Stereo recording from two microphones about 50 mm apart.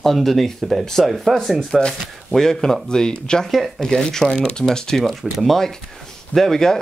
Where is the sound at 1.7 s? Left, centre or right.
Centre.